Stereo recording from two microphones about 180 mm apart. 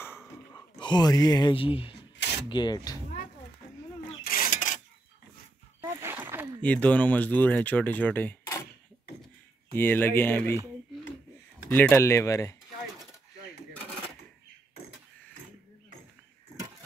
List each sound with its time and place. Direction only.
0.5 s speech: 25° left (ahead or behind)
4.2 s a sound: 55° left (ahead or behind)
5.8 s dog: 10° right (ahead or behind)
6.6 s speech: 10° left (ahead or behind)
9.8 s speech: 10° left (ahead or behind)
11.7 s speech: 10° left (ahead or behind)